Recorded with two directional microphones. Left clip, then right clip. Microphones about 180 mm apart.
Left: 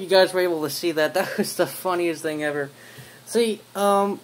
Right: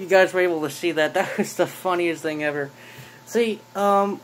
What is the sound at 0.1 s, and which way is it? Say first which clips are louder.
Speech: right 1 dB; centre (ahead or behind).